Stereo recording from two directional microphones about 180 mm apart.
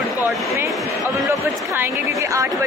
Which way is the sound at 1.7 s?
15° right (ahead or behind).